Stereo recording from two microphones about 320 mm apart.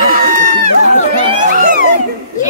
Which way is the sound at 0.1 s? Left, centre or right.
Right.